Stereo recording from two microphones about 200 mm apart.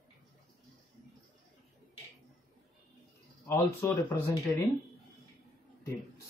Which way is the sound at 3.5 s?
15° left (ahead or behind).